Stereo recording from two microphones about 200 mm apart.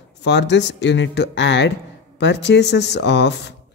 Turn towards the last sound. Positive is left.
turn(degrees=60)  # may be behind; listen again after turning